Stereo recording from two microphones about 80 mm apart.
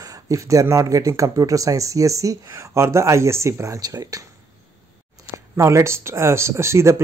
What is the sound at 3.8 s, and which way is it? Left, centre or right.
Speech, right.